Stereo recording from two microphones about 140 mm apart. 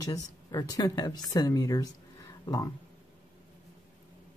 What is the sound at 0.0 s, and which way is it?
Speech, 25° left (ahead or behind).